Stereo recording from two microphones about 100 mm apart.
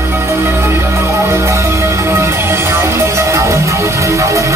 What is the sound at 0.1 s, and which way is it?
Music, 25° right (ahead or behind).